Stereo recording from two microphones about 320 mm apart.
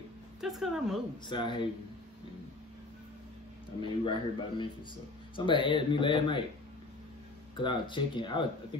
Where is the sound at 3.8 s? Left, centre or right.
Centre.